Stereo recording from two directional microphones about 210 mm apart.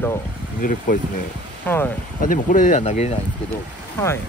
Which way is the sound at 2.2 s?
40° left (ahead or behind).